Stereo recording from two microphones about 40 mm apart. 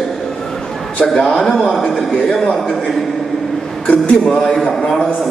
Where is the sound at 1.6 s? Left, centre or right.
Left.